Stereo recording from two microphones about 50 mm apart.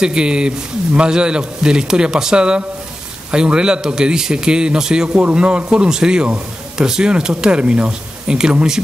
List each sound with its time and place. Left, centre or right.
0.0 s a man's voice: centre